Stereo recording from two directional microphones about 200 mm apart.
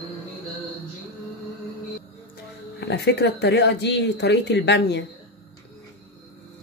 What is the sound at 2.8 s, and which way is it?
Speech, 55° left (ahead or behind).